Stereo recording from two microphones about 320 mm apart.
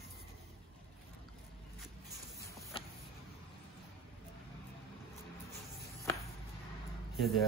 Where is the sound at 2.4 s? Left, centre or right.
Centre.